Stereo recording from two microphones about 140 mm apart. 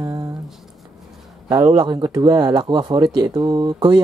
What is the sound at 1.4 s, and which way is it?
Speech, 25° right (ahead or behind).